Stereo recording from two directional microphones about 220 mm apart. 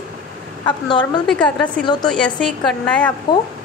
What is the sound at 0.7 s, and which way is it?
Speech, 20° left (ahead or behind).